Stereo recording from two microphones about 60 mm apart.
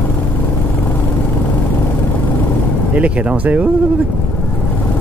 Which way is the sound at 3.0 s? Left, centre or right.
Right.